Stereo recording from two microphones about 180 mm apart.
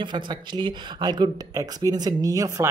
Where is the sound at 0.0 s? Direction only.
25° right (ahead or behind).